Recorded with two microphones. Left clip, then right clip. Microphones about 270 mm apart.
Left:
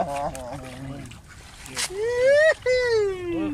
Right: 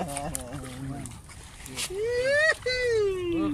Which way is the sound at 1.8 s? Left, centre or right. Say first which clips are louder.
Left 5 dB; left.